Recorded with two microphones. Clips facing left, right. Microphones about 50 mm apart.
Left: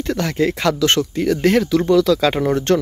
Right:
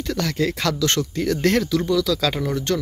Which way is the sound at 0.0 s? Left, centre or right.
Left.